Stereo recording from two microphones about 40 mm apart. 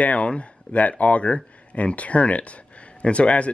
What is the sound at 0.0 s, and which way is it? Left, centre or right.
Speech, left.